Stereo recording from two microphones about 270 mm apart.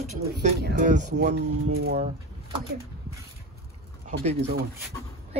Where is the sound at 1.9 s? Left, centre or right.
Right.